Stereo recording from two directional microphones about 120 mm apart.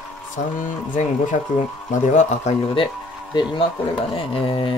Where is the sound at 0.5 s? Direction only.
90° left; by 2.6 s 70° left (ahead or behind).